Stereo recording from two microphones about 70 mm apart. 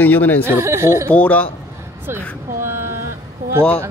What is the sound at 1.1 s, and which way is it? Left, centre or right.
Speech, left.